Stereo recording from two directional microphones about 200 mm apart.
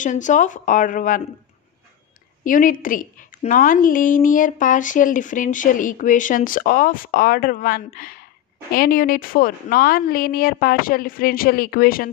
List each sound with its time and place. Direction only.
0.0 s a woman's voice: 40° left (ahead or behind)
2.4 s a woman's voice: 40° left (ahead or behind)